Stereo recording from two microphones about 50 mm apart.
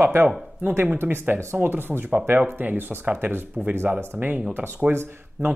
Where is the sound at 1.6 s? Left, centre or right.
Right.